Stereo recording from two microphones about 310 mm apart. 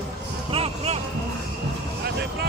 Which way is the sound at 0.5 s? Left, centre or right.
Centre.